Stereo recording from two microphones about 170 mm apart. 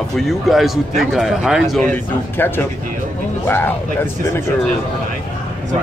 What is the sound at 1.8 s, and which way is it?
Speech, 10° left (ahead or behind).